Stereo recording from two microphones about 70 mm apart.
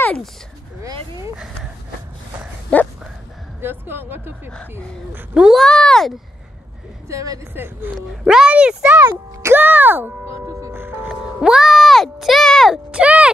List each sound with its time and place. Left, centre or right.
2.7 s a sound: left
3.6 s speech: right
5.5 s speech: centre
7.1 s speech: right
7.5 s speech: right
8.2 s speech: centre
9.0 s speech: right
10.2 s speech: right
10.7 s music: right
11.4 s music: centre
12.9 s a sound: centre